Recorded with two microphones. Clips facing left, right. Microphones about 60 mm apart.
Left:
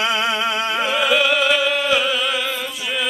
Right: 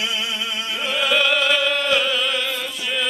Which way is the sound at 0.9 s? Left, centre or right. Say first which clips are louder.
Even; centre.